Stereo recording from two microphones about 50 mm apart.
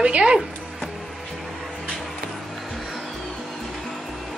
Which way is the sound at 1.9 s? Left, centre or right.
Centre.